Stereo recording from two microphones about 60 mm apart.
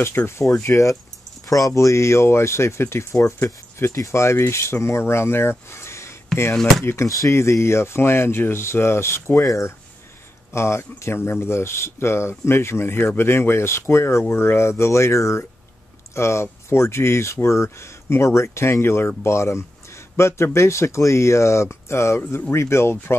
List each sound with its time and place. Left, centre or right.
0.0 s speech: left
0.7 s speech: left
7.1 s speech: left
7.3 s speech: left
9.4 s speech: left
10.5 s speech: left